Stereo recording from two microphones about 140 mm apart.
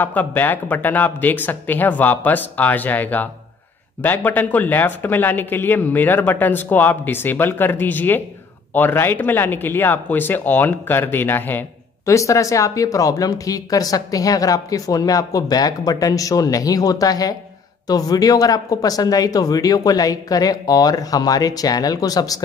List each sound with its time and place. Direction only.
0.0 s speech: 10° left (ahead or behind)